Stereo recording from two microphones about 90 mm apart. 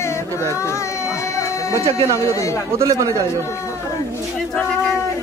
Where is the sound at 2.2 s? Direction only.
35° left (ahead or behind).